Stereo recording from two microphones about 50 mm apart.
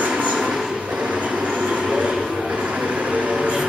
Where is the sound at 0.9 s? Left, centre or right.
Right.